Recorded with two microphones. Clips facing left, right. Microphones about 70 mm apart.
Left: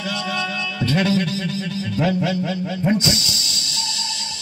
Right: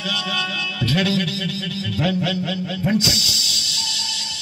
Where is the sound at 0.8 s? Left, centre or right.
Left.